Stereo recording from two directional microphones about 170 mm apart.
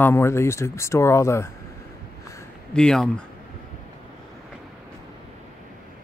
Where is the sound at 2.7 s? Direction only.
5° left (ahead or behind).